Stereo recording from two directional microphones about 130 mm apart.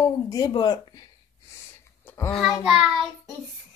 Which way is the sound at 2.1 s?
25° left (ahead or behind).